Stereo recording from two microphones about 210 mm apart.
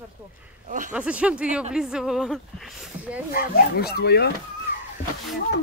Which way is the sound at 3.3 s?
45° left (ahead or behind).